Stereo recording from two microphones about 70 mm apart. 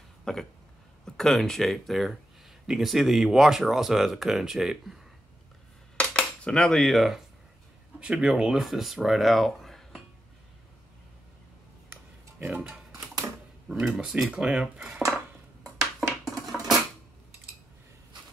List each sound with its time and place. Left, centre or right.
0.2 s a sound: centre
1.0 s speech: centre
5.9 s cutlery: centre
8.0 s speech: centre
12.4 s speech: right
13.7 s speech: centre
15.8 s a sound: centre